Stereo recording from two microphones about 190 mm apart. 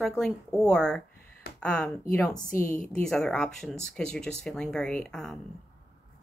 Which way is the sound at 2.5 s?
45° left (ahead or behind).